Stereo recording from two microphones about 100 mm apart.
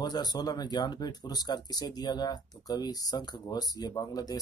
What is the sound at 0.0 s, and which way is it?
Speech, 45° left (ahead or behind).